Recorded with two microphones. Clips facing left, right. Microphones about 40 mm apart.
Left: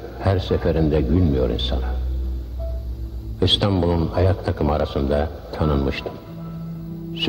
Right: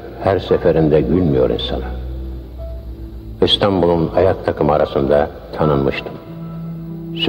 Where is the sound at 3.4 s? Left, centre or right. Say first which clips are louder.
Right 6 dB; right.